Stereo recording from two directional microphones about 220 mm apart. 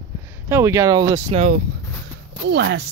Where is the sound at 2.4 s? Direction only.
50° right (ahead or behind).